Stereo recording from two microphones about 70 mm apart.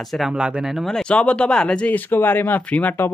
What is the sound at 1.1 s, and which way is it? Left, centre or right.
Speech, centre.